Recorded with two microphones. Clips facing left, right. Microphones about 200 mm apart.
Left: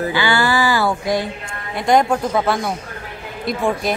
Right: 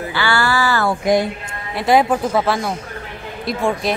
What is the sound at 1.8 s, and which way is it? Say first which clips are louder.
A woman's voice: right 1 dB; 5° right (ahead or behind).